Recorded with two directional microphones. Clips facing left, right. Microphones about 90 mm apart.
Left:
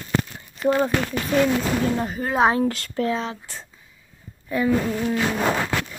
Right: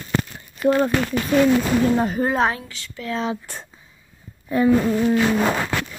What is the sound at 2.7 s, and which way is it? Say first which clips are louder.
Speech: left 12 dB; 55° left (ahead or behind).